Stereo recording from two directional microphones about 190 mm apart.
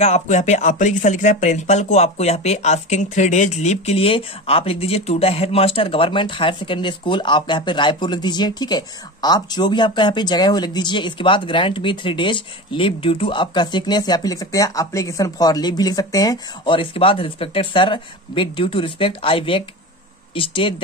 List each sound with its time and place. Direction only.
0.0 s speech: 35° left (ahead or behind)